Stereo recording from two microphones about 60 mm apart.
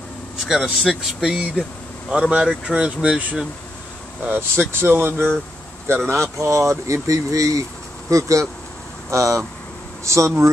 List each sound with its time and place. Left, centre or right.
0.5 s speech: centre
4.3 s speech: right